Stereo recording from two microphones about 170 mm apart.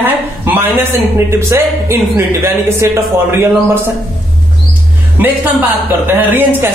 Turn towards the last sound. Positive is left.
turn(degrees=-10)  # may be behind; listen again after turning